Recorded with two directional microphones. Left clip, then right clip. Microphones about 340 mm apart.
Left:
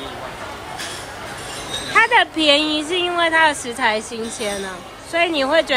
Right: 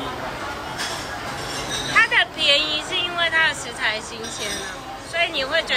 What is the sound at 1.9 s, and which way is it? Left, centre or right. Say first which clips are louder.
Speech: left 3 dB; centre.